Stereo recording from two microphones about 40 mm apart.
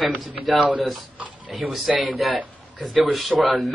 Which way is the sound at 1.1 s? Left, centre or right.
Right.